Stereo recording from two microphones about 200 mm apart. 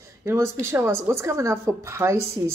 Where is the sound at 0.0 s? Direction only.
15° right (ahead or behind).